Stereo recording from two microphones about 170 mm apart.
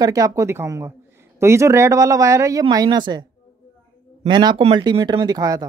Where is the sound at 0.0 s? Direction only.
20° right (ahead or behind).